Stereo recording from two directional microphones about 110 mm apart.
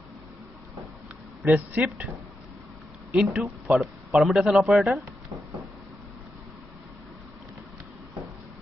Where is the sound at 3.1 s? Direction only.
5° right (ahead or behind).